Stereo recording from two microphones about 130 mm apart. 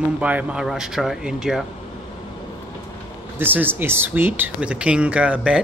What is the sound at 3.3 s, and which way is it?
Speech, 15° right (ahead or behind).